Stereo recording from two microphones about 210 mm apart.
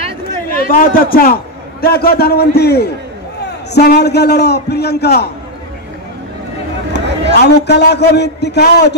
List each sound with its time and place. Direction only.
0.7 s a man's voice: 45° left (ahead or behind)
6.9 s a man's voice: 55° left (ahead or behind)